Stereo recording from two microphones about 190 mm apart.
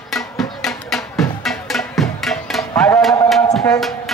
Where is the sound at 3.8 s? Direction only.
Centre (ahead or behind).